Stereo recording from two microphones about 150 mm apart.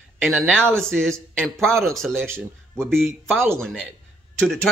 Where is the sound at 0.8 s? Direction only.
5° left (ahead or behind).